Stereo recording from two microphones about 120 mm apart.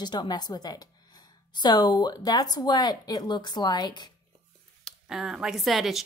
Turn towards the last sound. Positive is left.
turn(degrees=0)  # may be behind; listen again after turning